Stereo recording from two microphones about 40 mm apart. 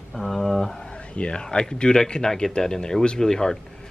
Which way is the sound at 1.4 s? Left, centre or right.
Centre.